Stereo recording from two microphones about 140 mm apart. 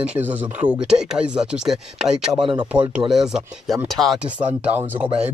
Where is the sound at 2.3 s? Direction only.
35° right (ahead or behind).